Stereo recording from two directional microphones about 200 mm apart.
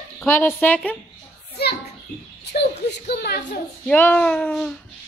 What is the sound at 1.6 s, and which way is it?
A child's voice, 55° left (ahead or behind).